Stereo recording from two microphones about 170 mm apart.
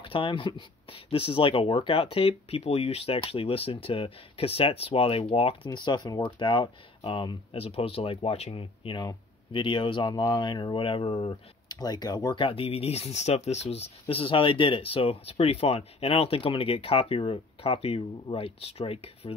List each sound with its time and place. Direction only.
0.0 s speech: 30° left (ahead or behind)
11.7 s speech: 25° left (ahead or behind)